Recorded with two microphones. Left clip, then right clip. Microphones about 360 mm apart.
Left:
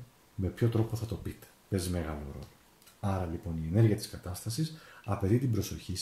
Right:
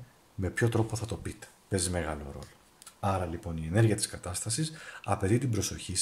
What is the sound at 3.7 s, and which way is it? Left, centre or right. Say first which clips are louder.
Speech: right 2 dB; right.